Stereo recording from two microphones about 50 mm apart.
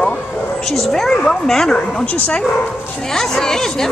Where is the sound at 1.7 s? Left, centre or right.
Left.